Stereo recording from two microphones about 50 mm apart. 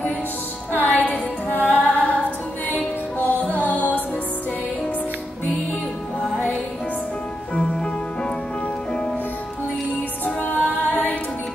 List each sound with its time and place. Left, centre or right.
0.7 s music: left
7.5 s music: centre
10.2 s music: left